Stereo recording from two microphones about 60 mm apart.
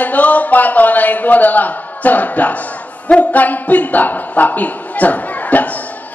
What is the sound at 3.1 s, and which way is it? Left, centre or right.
Speech, left.